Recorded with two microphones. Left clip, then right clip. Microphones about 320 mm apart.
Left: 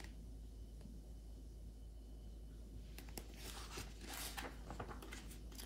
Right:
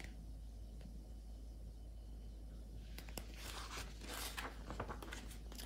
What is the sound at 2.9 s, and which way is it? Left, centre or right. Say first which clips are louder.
Zipper: right 3 dB; centre.